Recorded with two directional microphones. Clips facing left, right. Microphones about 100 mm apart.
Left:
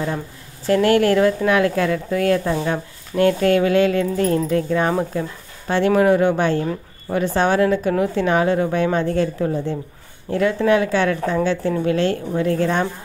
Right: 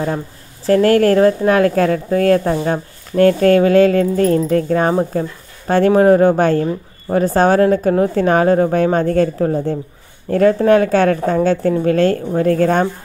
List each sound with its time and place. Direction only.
0.7 s a woman's voice: 40° right (ahead or behind)